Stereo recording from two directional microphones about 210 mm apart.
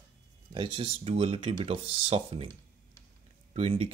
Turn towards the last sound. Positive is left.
turn(degrees=-30)  # may be behind; listen again after turning